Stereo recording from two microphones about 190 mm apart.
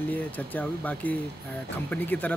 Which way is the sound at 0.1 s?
10° left (ahead or behind).